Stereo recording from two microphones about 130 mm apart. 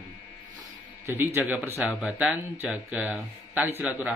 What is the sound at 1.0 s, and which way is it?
Speech, 15° right (ahead or behind).